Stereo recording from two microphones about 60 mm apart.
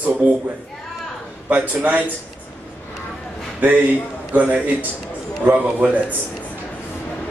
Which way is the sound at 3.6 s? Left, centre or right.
Right.